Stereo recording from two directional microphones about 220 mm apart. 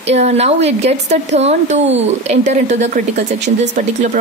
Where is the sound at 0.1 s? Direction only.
30° right (ahead or behind).